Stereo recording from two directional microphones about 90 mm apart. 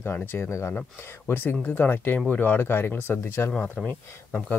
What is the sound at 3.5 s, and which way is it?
Speech, 15° left (ahead or behind).